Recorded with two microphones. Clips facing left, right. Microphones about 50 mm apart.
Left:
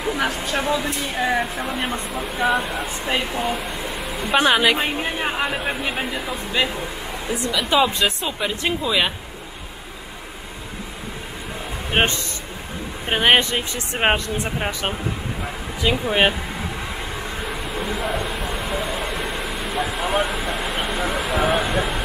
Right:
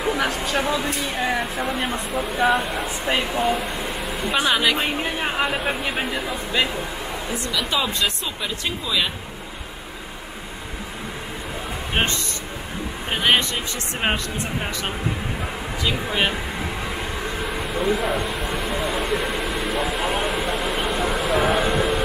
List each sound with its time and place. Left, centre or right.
0.2 s speech: centre
4.4 s speech: centre
7.7 s speech: centre
11.9 s speech: left
17.5 s a sound: centre